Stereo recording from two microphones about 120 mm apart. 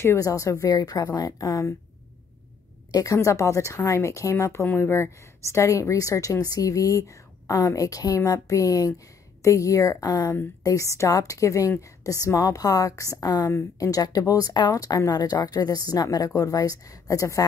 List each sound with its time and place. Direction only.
0.0 s a woman's voice: 25° left (ahead or behind)
2.9 s a woman's voice: 30° left (ahead or behind)